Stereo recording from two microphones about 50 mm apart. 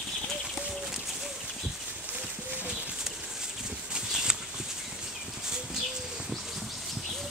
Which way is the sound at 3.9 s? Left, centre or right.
Centre.